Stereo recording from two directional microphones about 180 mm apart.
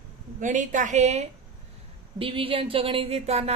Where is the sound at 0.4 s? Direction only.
45° right (ahead or behind).